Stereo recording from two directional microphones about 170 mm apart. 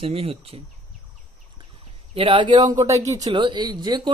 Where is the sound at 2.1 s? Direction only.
30° right (ahead or behind).